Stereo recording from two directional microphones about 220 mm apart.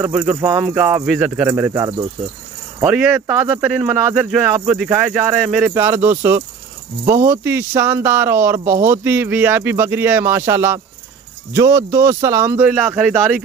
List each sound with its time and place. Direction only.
0.0 s speech: 10° right (ahead or behind)
2.8 s speech: 5° right (ahead or behind)